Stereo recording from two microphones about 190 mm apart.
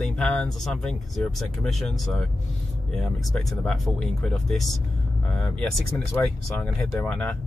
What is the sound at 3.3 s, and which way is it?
Speech, centre (ahead or behind).